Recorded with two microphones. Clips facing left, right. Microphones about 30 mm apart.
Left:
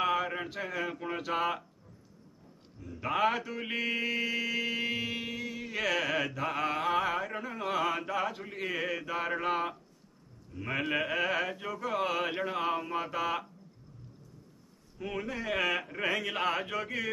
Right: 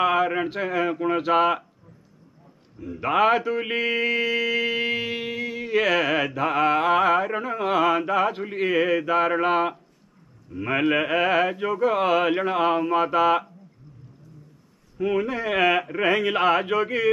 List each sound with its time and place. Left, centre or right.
0.0 s mantra: right
2.8 s mantra: right
15.0 s mantra: right